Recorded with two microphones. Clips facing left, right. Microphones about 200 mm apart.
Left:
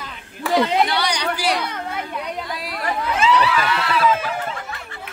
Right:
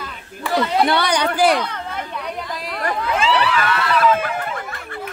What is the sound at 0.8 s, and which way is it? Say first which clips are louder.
Speech: right 4 dB; 55° right (ahead or behind).